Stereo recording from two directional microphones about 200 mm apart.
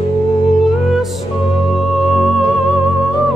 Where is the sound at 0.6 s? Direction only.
Centre (ahead or behind).